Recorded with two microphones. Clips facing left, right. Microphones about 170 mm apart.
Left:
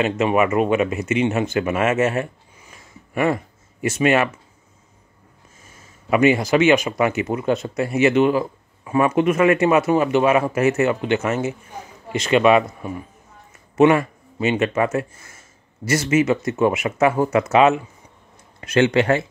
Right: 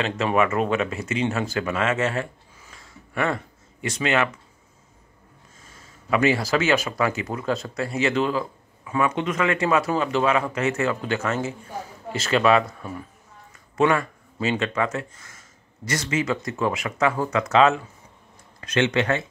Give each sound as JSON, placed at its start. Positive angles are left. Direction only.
{"t": 0.0, "sound": "speech", "side_deg": 15}
{"t": 6.0, "sound": "speech", "side_deg": 20}
{"t": 18.6, "sound": "speech", "side_deg": 30}